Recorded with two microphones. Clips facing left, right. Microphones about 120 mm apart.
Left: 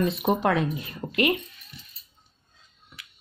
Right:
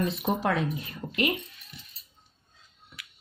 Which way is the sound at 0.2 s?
65° left (ahead or behind).